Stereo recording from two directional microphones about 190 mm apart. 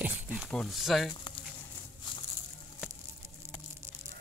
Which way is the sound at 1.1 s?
30° left (ahead or behind).